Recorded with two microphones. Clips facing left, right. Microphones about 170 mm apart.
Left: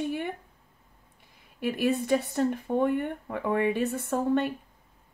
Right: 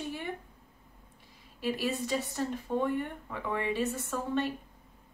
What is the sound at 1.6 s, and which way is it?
Speech, 55° left (ahead or behind).